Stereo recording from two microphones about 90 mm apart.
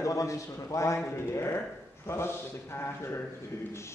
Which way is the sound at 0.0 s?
40° left (ahead or behind).